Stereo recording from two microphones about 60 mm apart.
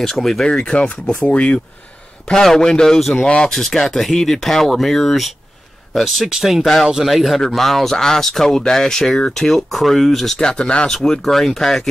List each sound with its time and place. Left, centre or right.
0.0 s speech: centre
0.5 s speech: centre
10.4 s speech: centre